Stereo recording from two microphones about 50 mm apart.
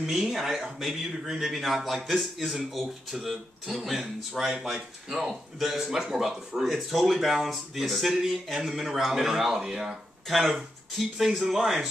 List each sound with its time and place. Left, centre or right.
0.0 s a man's voice: centre
1.9 s speech: centre
5.9 s speech: centre